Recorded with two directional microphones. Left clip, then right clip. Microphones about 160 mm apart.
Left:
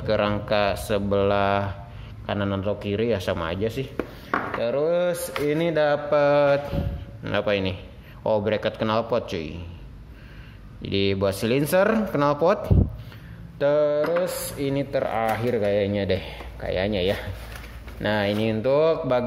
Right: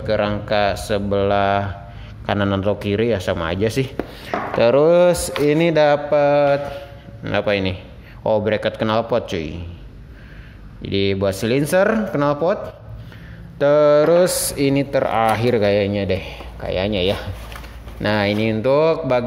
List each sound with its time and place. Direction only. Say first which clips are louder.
0.0 s speech: right 3 dB; centre (ahead or behind)
2.2 s speech: right 7 dB; 15° right (ahead or behind)
6.0 s speech: right 4 dB; centre (ahead or behind)
10.8 s speech: right 4 dB; 5° right (ahead or behind)
13.6 s mantra: right 6 dB; 15° right (ahead or behind)
13.8 s mantra: right 9 dB; 35° right (ahead or behind)
14.7 s speech: right 5 dB; 20° right (ahead or behind)
15.9 s speech: right 3 dB; 5° right (ahead or behind)